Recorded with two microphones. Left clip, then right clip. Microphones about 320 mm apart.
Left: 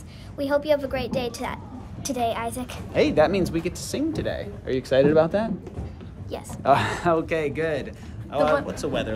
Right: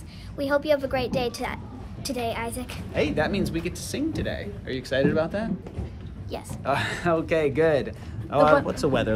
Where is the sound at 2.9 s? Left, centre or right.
Left.